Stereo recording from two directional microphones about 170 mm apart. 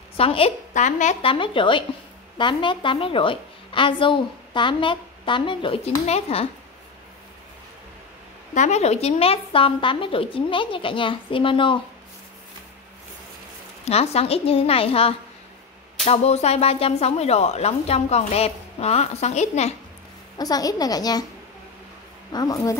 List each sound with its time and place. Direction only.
0.2 s a woman's voice: 35° left (ahead or behind)
1.2 s a woman's voice: 30° left (ahead or behind)
8.5 s speech: 40° left (ahead or behind)
13.8 s speech: 35° left (ahead or behind)
20.3 s a woman's voice: 20° left (ahead or behind)
22.3 s a woman's voice: 25° left (ahead or behind)